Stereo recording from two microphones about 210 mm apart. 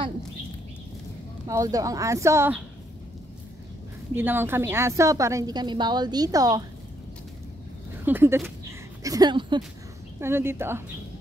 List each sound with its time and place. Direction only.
1.5 s a woman's voice: 15° right (ahead or behind)
4.1 s a woman's voice: 10° right (ahead or behind)
8.0 s a woman's voice: 10° right (ahead or behind)
10.2 s a woman's voice: 10° right (ahead or behind)